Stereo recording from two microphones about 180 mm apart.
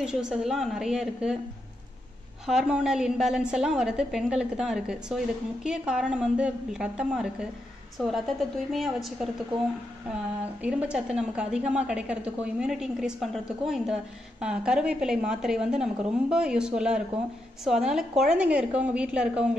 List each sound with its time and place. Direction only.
0.0 s a woman's voice: 5° right (ahead or behind)
2.4 s a woman's voice: 5° right (ahead or behind)
8.7 s a woman's voice: centre (ahead or behind)
10.6 s a woman's voice: 5° right (ahead or behind)